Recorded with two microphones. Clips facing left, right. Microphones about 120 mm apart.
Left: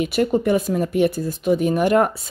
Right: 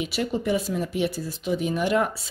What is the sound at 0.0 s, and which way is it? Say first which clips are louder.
Speech: left 7 dB; 50° left (ahead or behind).